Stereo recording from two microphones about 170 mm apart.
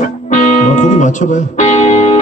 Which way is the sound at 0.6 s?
45° left (ahead or behind).